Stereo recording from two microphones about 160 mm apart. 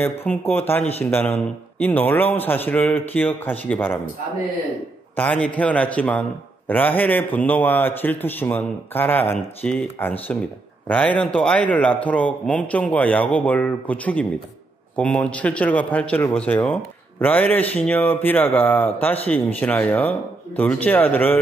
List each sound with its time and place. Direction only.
0.0 s speech: 10° left (ahead or behind)
5.1 s speech: 10° left (ahead or behind)